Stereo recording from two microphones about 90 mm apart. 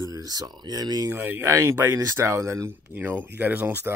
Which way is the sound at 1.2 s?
25° right (ahead or behind).